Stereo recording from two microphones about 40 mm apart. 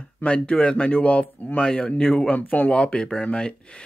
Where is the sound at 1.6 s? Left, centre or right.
Left.